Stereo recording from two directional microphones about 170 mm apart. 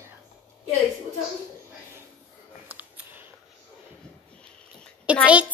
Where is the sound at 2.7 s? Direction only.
10° right (ahead or behind).